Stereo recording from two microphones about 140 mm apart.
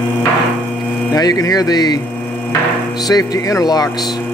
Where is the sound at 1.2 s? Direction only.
25° left (ahead or behind).